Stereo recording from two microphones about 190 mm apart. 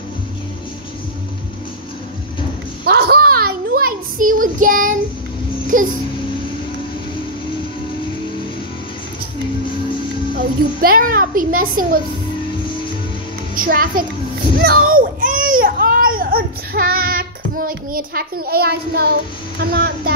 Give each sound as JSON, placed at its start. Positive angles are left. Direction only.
{"t": 2.8, "sound": "a sound", "side_deg": -55}
{"t": 5.7, "sound": "a child's voice", "side_deg": -45}
{"t": 10.3, "sound": "a child's voice", "side_deg": -50}
{"t": 13.6, "sound": "a child's voice", "side_deg": -50}
{"t": 14.9, "sound": "a sound", "side_deg": -45}
{"t": 19.6, "sound": "speech", "side_deg": -55}